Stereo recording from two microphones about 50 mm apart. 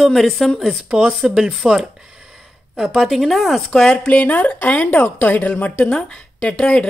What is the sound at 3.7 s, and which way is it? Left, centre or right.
A woman's voice, centre.